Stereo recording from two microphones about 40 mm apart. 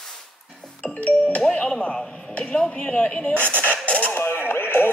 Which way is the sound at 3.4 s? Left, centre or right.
Right.